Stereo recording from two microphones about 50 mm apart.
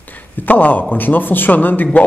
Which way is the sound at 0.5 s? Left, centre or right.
Left.